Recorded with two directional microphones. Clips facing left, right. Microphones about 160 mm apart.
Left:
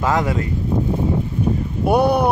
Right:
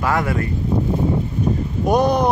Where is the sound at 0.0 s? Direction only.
20° left (ahead or behind).